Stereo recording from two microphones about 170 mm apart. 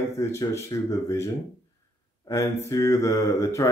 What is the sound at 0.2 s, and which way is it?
Speech, 15° left (ahead or behind).